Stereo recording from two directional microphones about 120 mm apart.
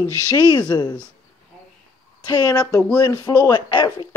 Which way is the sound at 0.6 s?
35° left (ahead or behind).